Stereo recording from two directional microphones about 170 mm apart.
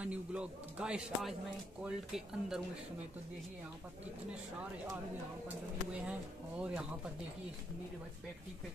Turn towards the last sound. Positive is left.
turn(degrees=-10)  # may be behind; listen again after turning